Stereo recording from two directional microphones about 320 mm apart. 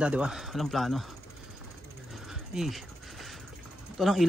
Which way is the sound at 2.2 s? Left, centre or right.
Centre.